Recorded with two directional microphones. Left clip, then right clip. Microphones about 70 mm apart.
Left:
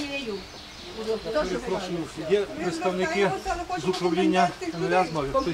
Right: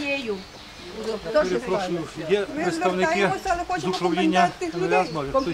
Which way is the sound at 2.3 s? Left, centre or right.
Right.